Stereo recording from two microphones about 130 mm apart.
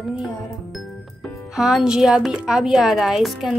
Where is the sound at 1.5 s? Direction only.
5° right (ahead or behind).